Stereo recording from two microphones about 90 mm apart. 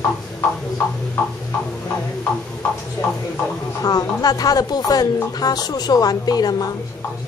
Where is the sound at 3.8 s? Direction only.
45° left (ahead or behind).